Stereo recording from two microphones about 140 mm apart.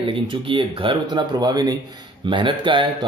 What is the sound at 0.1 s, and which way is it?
Speech, 35° right (ahead or behind).